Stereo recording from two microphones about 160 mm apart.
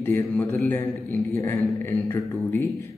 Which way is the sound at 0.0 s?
15° left (ahead or behind).